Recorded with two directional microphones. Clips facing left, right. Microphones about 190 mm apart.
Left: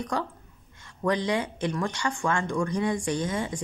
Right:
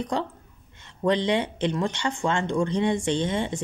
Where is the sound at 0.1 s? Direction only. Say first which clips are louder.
Right 2 dB; 25° right (ahead or behind).